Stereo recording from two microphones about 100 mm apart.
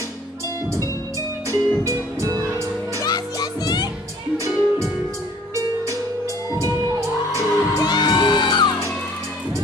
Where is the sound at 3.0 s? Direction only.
40° left (ahead or behind).